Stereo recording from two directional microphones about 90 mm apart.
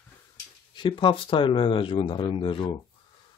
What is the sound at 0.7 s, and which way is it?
Speech, 65° left (ahead or behind).